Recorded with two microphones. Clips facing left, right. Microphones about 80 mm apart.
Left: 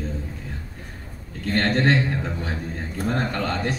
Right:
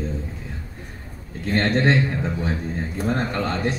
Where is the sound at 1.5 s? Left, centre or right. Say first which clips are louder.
Right 1 dB; right.